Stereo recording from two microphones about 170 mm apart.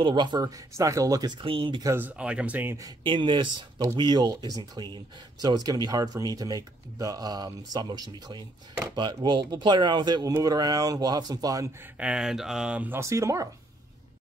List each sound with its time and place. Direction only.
0.0 s speech: 25° right (ahead or behind)
1.9 s speech: 10° right (ahead or behind)
3.0 s speech: 30° right (ahead or behind)
12.0 s speech: 5° right (ahead or behind)